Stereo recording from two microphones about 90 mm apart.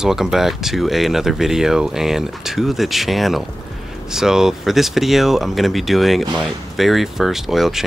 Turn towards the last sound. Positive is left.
turn(degrees=-5)  # may be behind; listen again after turning